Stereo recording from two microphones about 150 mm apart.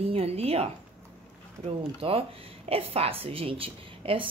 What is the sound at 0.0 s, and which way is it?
Speech, 40° right (ahead or behind).